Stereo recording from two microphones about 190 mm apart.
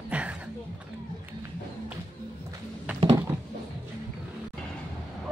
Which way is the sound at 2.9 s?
25° right (ahead or behind).